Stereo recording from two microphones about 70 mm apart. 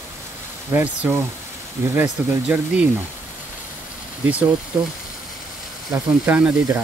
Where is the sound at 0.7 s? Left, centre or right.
Right.